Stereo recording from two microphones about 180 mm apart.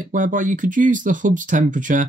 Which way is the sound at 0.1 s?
45° right (ahead or behind).